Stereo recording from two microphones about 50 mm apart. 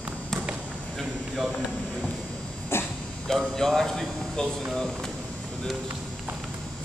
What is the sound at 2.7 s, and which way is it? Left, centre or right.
Dog, left.